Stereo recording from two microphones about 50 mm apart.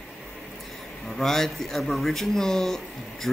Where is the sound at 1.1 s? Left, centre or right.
Centre.